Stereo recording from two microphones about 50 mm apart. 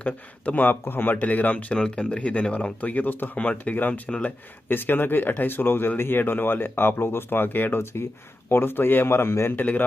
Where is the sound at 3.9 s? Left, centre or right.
Left.